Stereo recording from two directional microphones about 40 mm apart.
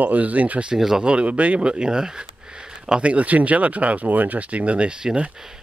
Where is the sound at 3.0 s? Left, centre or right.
Right.